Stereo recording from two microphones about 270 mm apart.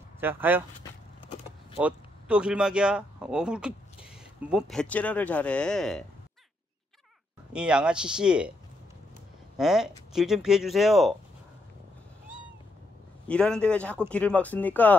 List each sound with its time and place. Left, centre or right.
0.2 s speech: centre
1.8 s speech: centre
7.5 s speech: centre
9.6 s speech: centre
13.3 s speech: centre